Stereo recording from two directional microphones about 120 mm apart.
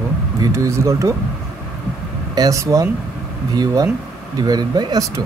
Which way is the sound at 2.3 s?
30° right (ahead or behind).